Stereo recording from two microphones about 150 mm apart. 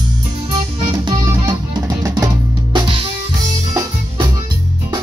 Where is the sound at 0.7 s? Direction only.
30° right (ahead or behind).